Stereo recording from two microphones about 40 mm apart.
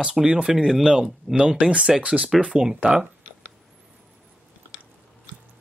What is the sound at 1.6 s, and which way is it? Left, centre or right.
Speech, right.